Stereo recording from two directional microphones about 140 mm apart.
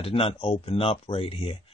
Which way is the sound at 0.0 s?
40° left (ahead or behind).